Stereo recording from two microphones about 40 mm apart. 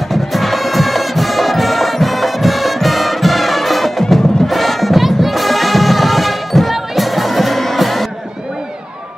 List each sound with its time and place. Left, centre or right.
0.1 s music: centre